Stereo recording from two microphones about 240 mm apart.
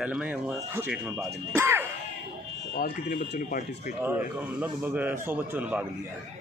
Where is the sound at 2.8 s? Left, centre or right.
Left.